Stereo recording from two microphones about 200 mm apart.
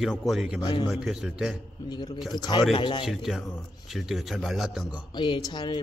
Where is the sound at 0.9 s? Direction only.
Centre (ahead or behind).